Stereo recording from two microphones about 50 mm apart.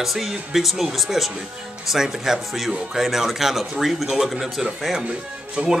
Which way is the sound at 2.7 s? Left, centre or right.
Centre.